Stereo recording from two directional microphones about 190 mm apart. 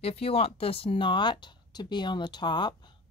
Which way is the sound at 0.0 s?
30° left (ahead or behind).